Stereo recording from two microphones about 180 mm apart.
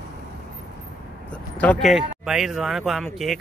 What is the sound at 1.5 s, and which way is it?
Speech, 5° left (ahead or behind).